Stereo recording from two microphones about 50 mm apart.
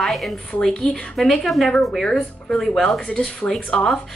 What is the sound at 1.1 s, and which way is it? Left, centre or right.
A woman's voice, centre.